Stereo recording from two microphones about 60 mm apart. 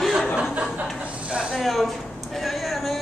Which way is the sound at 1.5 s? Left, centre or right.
Centre.